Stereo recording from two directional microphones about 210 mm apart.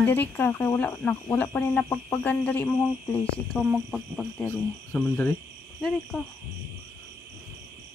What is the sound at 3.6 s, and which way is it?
Cricket, centre (ahead or behind).